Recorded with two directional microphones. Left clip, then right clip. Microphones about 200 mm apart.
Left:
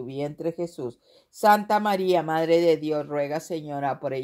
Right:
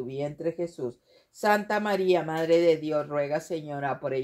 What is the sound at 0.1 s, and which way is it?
Speech, 45° left (ahead or behind).